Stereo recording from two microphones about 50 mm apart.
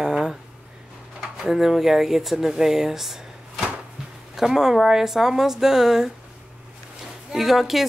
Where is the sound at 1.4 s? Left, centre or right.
Centre.